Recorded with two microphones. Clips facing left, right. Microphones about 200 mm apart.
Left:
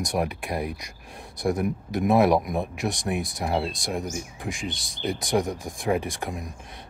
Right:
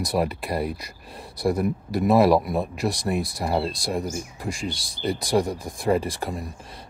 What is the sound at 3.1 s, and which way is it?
Speech, centre (ahead or behind).